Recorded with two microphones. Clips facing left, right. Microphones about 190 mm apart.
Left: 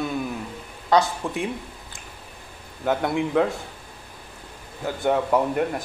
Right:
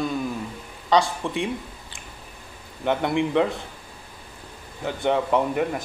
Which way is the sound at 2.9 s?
Centre (ahead or behind).